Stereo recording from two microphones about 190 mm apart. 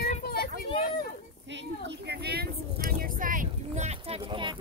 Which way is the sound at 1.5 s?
65° right (ahead or behind).